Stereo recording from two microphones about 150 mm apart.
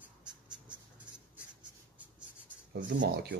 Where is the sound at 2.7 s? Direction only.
75° right (ahead or behind).